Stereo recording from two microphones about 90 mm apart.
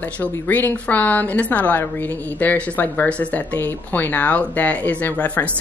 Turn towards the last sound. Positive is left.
turn(degrees=15)  # may be behind; listen again after turning